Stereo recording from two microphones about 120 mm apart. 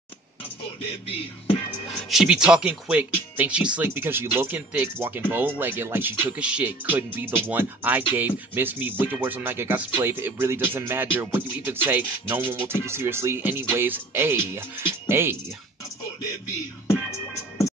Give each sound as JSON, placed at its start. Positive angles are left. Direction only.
{"t": 2.0, "sound": "speech", "side_deg": -5}